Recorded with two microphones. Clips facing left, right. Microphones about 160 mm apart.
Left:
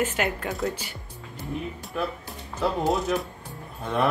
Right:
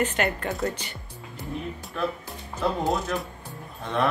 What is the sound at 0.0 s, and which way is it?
Speech, 5° left (ahead or behind).